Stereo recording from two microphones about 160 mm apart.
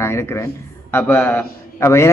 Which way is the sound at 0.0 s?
15° left (ahead or behind).